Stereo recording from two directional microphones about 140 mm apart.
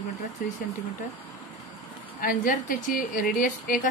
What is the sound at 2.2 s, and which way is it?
A woman's voice, 85° left.